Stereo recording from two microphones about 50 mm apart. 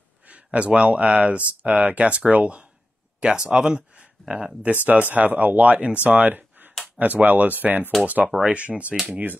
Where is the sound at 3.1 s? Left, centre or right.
Centre.